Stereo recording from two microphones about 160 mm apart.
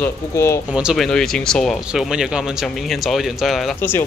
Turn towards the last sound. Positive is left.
turn(degrees=0)  # may be behind; listen again after turning